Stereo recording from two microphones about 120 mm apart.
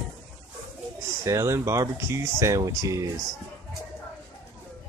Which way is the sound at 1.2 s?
25° right (ahead or behind).